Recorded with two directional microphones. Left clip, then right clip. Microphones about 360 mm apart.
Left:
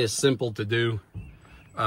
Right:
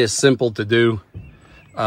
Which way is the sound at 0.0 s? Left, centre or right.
Centre.